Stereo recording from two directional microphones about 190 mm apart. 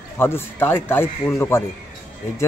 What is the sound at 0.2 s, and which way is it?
Speech, 10° left (ahead or behind).